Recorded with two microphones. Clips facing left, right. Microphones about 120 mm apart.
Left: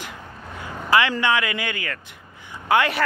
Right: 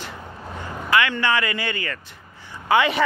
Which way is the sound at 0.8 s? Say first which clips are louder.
Left 1 dB; 30° left (ahead or behind).